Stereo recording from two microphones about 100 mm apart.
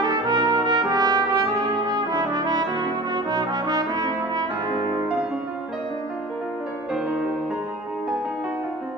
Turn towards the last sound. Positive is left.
turn(degrees=-10)  # may be behind; listen again after turning